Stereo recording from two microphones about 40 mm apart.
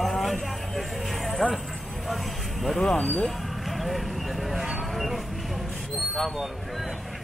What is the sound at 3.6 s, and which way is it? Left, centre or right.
Speech, centre.